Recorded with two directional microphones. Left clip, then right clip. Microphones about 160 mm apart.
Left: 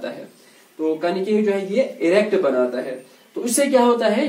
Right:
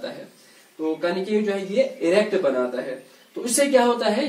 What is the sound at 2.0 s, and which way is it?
Speech, 10° left (ahead or behind).